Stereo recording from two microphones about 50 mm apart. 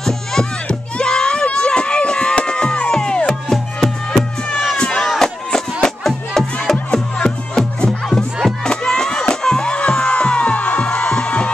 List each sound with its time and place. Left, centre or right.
0.0 s crowd: centre
3.0 s music: centre
4.7 s chop: centre
5.2 s music: centre
8.1 s music: centre
8.6 s music: centre